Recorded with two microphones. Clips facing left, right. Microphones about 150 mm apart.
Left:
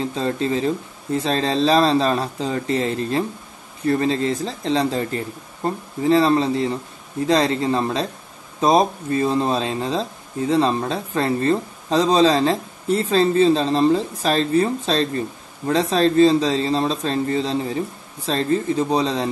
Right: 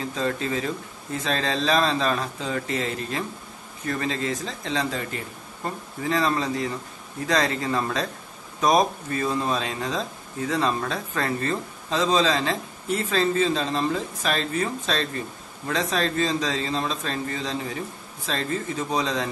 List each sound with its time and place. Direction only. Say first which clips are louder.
0.0 s speech: left 4 dB; 30° left (ahead or behind)